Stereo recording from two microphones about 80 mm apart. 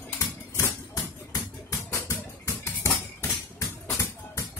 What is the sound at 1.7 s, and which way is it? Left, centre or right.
Music, left.